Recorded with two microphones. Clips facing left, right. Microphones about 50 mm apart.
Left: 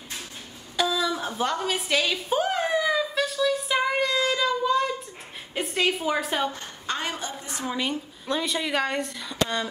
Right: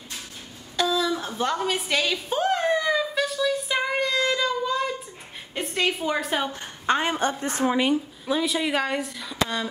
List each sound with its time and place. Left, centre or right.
0.7 s a sound: centre
5.5 s a woman's voice: centre
6.5 s a woman's voice: right
7.2 s a woman's voice: right
7.6 s speech: right
7.9 s a woman's voice: centre